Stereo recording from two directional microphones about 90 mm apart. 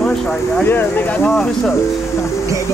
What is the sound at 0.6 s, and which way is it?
Speech, 20° left (ahead or behind).